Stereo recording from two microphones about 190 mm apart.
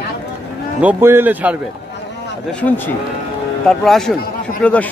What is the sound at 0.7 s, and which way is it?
Speech, 10° right (ahead or behind).